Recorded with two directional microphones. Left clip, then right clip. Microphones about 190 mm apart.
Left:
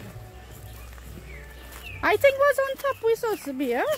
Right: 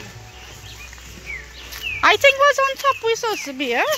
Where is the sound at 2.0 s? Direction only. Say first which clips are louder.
Right 6 dB; 10° left (ahead or behind).